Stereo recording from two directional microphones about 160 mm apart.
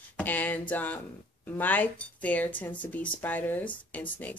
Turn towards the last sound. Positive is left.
turn(degrees=10)  # may be behind; listen again after turning